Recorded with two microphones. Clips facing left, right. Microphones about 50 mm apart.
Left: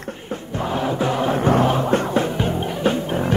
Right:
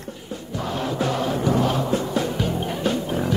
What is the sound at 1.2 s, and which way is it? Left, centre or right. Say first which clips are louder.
Music: left 6 dB; left.